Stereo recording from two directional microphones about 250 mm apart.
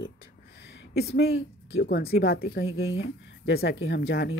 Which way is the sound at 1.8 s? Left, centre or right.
Left.